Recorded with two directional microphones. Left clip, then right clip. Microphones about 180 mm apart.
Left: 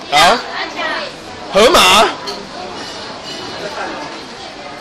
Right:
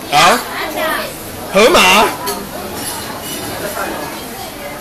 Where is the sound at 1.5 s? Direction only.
25° left (ahead or behind).